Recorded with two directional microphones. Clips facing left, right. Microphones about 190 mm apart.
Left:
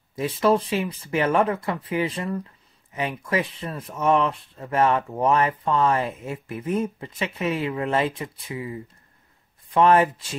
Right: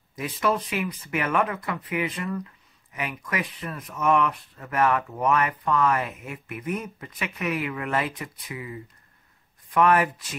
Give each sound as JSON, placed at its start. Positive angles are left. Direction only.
{"t": 0.1, "sound": "speech", "side_deg": 30}